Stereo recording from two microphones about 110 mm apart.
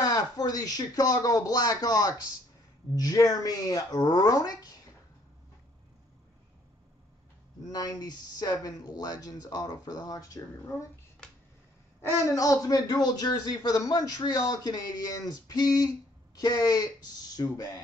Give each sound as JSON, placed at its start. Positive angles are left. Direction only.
{"t": 0.0, "sound": "speech", "side_deg": 35}
{"t": 7.6, "sound": "speech", "side_deg": 35}
{"t": 12.0, "sound": "speech", "side_deg": 30}